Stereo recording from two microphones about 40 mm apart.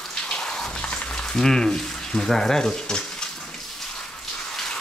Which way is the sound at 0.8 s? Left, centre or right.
Left.